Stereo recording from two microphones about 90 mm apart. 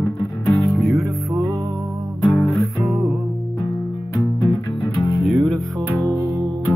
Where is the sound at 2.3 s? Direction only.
Centre (ahead or behind).